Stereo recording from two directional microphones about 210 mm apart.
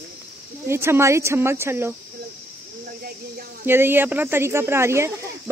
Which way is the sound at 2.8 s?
45° right (ahead or behind).